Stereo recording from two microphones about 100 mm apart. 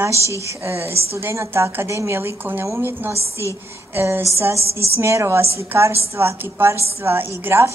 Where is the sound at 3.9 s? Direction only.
25° right (ahead or behind).